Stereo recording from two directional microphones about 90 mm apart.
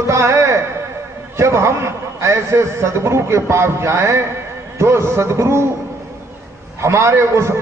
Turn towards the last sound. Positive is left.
turn(degrees=-30)  # may be behind; listen again after turning